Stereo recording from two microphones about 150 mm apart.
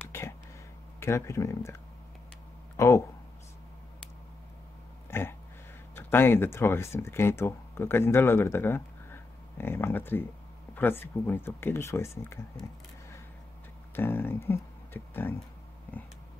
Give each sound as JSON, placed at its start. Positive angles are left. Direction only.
{"t": 0.9, "sound": "speech", "side_deg": 20}
{"t": 2.8, "sound": "speech", "side_deg": 20}
{"t": 5.1, "sound": "a sound", "side_deg": 15}
{"t": 5.9, "sound": "speech", "side_deg": 15}
{"t": 13.9, "sound": "speech", "side_deg": 15}